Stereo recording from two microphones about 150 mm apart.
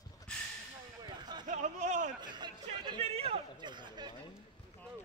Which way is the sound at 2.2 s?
30° right (ahead or behind).